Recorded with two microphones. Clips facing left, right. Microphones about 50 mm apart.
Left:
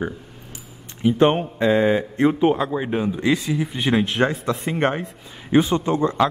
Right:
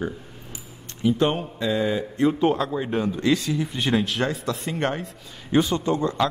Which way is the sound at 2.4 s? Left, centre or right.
Centre.